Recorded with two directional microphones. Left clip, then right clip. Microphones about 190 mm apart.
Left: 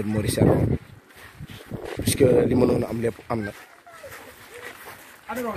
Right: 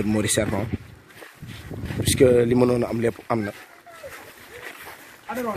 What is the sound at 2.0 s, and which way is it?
A man's voice, centre (ahead or behind).